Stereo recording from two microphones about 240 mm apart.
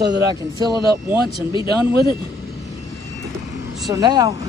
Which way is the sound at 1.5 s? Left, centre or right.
Centre.